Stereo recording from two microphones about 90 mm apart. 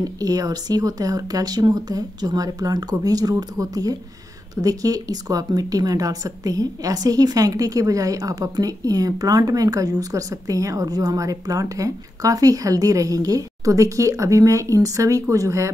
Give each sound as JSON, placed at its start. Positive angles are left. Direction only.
{"t": 0.0, "sound": "a woman's voice", "side_deg": -45}